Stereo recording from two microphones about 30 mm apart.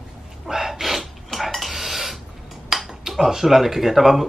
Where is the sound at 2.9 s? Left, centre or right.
Centre.